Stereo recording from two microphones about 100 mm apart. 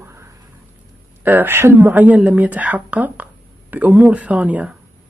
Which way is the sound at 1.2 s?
20° right (ahead or behind).